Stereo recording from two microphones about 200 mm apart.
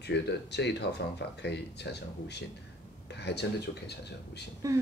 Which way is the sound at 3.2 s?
55° left (ahead or behind).